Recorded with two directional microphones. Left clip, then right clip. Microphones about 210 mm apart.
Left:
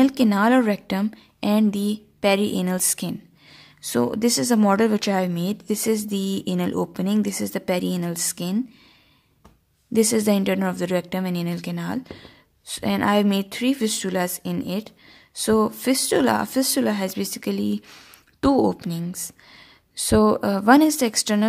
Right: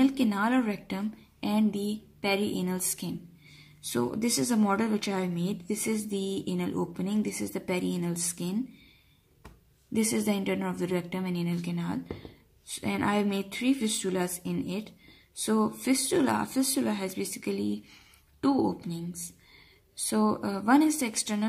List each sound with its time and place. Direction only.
0.0 s a woman's voice: 45° left (ahead or behind)
9.9 s a woman's voice: 40° left (ahead or behind)
20.1 s speech: 45° left (ahead or behind)